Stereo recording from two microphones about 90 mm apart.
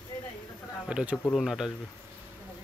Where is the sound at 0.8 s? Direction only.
10° right (ahead or behind).